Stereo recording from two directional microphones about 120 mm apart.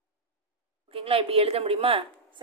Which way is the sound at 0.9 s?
50° right (ahead or behind).